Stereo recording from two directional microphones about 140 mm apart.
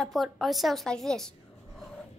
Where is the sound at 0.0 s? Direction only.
Centre (ahead or behind).